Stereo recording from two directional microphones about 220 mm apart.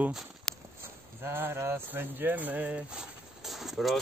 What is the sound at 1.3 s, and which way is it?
Speech, 10° right (ahead or behind).